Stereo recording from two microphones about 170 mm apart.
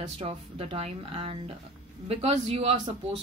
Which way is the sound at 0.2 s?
35° right (ahead or behind).